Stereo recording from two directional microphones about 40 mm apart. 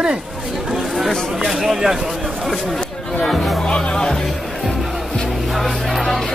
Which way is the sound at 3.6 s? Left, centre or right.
Left.